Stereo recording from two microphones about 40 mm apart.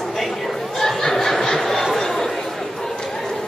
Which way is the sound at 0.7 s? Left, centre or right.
Centre.